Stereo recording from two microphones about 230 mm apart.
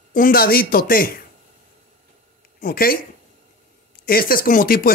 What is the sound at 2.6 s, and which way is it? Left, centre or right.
Speech, left.